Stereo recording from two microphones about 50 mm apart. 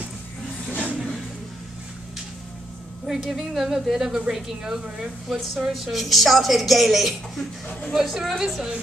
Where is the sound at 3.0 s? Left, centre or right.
Centre.